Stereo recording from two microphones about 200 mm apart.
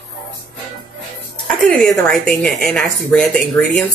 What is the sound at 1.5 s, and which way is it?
Speech, centre (ahead or behind).